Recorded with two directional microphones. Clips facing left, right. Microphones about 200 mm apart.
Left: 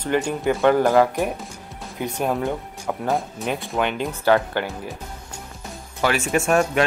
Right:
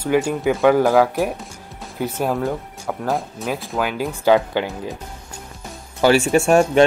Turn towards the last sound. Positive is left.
turn(degrees=-30)  # may be behind; listen again after turning